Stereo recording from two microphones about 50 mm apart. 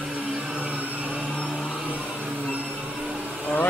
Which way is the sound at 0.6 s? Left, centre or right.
Right.